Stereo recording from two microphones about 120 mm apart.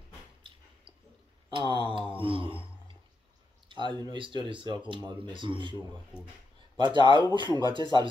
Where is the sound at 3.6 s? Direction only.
40° right (ahead or behind).